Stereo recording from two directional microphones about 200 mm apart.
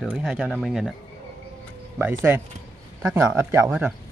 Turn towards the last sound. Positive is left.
turn(degrees=-10)  # may be behind; listen again after turning